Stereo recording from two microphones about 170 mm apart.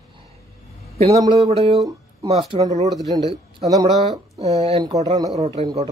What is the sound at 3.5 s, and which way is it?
Speech, 20° right (ahead or behind).